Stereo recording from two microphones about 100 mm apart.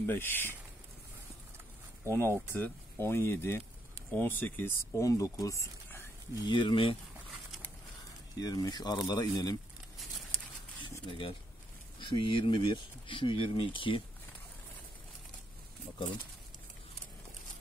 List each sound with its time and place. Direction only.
0.0 s speech: 20° left (ahead or behind)
2.0 s speech: 25° left (ahead or behind)
5.0 s speech: 35° left (ahead or behind)
6.4 s speech: 55° left (ahead or behind)
8.4 s speech: 40° left (ahead or behind)
11.1 s speech: 60° left (ahead or behind)